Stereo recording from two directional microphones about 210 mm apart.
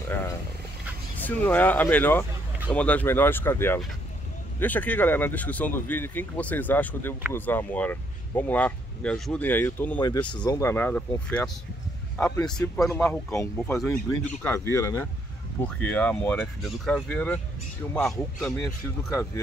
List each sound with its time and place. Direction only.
1.2 s speech: 10° left (ahead or behind)
9.9 s a man's voice: 20° left (ahead or behind)